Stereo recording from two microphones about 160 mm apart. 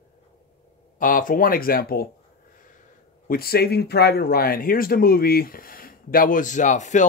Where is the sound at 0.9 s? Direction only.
60° left (ahead or behind).